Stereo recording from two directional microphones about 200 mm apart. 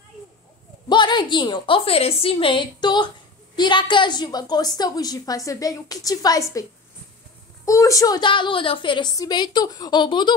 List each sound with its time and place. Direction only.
0.8 s a woman's voice: 25° left (ahead or behind)
7.6 s a woman's voice: 15° left (ahead or behind)